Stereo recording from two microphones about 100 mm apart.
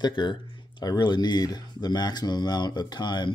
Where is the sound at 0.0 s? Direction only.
50° left (ahead or behind).